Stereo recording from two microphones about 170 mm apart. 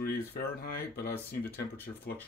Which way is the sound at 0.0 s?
65° left (ahead or behind).